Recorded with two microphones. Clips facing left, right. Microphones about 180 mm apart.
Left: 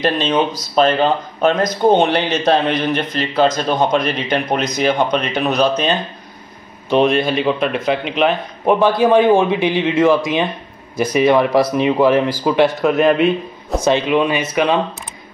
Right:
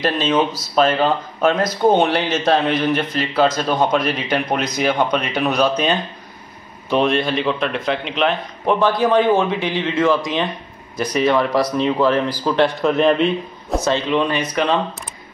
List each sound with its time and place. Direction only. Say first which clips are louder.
0.4 s a man's voice: left 2 dB; 5° right (ahead or behind)
0.9 s speech: left 2 dB; 20° left (ahead or behind)
1.5 s speech: left 2 dB; 5° right (ahead or behind)
7.0 s a man's voice: left 3 dB; 5° left (ahead or behind)